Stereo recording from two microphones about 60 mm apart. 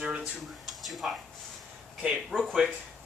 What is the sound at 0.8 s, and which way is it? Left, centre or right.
Speech, centre.